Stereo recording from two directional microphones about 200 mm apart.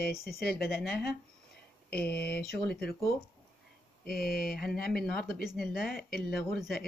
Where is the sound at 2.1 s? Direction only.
50° left (ahead or behind).